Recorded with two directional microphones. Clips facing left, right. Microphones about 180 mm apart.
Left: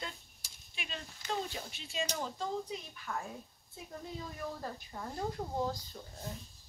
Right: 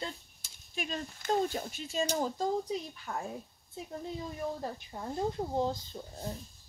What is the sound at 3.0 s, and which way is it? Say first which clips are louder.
Speech: right 2 dB; 30° right (ahead or behind).